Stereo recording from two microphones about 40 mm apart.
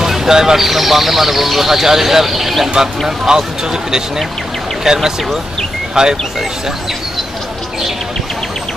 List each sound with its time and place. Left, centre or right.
0.0 s speech: centre